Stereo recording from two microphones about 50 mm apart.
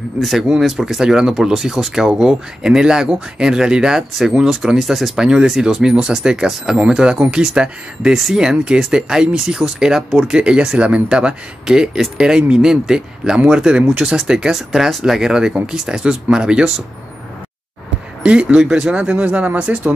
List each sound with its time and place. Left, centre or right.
0.2 s speech: centre
15.1 s speech: centre
18.2 s speech: right